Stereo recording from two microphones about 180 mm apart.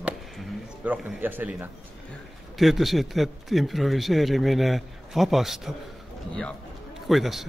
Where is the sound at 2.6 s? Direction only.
Centre (ahead or behind).